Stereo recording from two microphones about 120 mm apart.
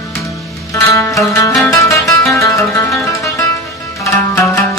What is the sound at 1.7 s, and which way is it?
Music, 25° left (ahead or behind).